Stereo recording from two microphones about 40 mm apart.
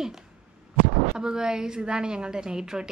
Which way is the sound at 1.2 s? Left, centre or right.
Centre.